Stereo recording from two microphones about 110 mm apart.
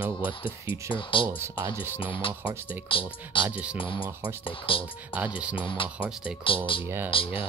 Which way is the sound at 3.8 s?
50° left (ahead or behind).